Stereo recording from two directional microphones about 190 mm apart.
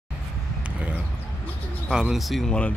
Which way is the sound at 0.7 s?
5° right (ahead or behind).